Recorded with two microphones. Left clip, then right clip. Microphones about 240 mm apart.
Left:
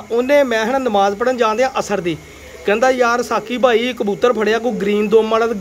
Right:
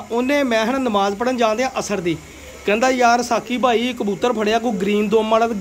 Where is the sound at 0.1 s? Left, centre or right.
Centre.